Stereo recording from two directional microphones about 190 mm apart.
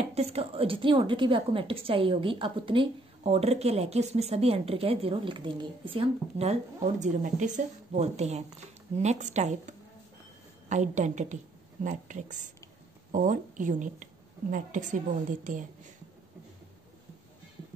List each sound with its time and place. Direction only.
0.1 s a woman's voice: 35° right (ahead or behind)